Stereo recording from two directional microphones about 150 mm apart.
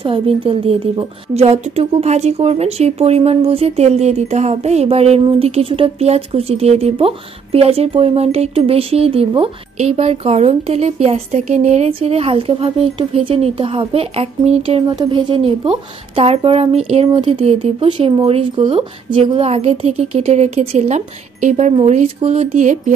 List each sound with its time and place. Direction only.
0.0 s a woman's voice: 35° right (ahead or behind)
14.9 s a woman's voice: 30° right (ahead or behind); by 22.9 s 50° right (ahead or behind)